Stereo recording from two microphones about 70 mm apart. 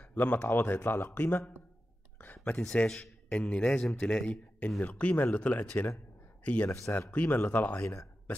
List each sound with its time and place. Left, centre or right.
0.0 s speech: left
2.1 s a sound: left
2.6 s a man's voice: centre